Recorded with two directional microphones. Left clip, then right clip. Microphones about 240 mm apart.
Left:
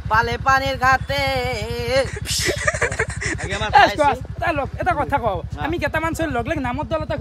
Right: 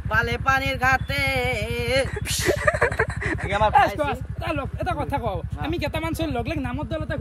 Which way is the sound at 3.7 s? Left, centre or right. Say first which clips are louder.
Left 7 dB; left.